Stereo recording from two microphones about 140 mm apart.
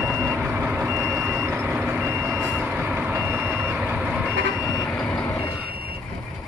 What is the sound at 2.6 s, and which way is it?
Reversing beeps, 10° right (ahead or behind).